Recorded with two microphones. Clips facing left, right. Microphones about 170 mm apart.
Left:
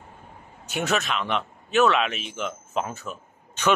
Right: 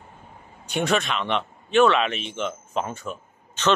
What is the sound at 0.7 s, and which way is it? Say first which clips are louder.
A man's voice: right 2 dB; 5° left (ahead or behind).